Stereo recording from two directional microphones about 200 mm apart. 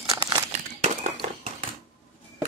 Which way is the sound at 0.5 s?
35° right (ahead or behind).